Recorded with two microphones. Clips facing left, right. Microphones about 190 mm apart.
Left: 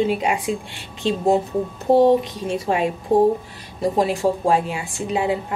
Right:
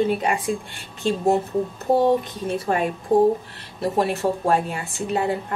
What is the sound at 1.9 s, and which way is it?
Speech, 25° left (ahead or behind).